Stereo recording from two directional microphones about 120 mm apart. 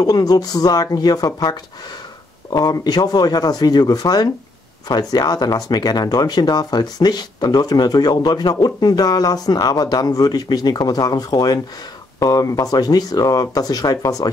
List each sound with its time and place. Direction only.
0.0 s speech: 35° left (ahead or behind)